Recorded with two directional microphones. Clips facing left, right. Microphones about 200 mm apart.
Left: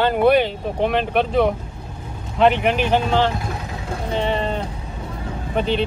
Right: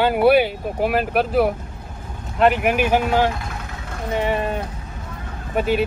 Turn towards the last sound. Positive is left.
turn(degrees=-10)  # may be behind; listen again after turning